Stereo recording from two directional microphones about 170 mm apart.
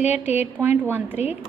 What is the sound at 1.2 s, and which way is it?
Speech, 40° left (ahead or behind).